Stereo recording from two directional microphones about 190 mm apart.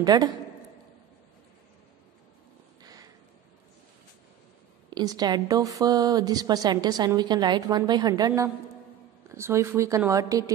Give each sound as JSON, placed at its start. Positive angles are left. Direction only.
{"t": 0.0, "sound": "speech", "side_deg": -20}
{"t": 2.8, "sound": "a sound", "side_deg": -20}
{"t": 4.9, "sound": "speech", "side_deg": -20}